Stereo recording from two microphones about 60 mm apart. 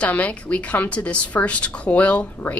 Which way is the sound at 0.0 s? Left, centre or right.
Left.